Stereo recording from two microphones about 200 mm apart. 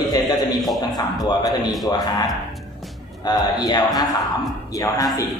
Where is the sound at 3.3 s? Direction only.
20° left (ahead or behind).